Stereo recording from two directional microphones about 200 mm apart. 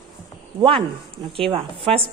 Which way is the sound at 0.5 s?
25° right (ahead or behind).